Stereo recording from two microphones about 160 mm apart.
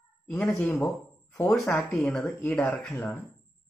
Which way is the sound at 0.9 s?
20° left (ahead or behind).